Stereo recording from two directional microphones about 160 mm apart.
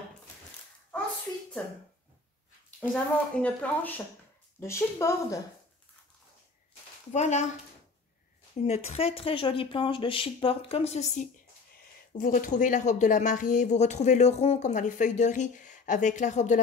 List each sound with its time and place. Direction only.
2.9 s a woman's voice: 5° left (ahead or behind)
7.1 s speech: 45° left (ahead or behind)
8.6 s speech: 40° left (ahead or behind)
12.1 s speech: 60° left (ahead or behind)